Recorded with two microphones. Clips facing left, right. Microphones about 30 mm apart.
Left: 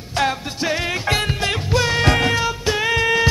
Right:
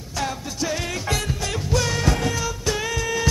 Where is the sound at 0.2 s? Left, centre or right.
Left.